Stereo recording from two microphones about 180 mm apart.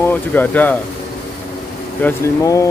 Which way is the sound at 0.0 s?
10° left (ahead or behind).